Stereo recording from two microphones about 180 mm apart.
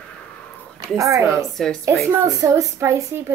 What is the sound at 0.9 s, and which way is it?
A woman's voice, 15° right (ahead or behind).